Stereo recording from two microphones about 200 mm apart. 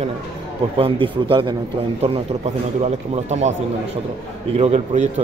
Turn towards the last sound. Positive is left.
turn(degrees=-35)  # may be behind; listen again after turning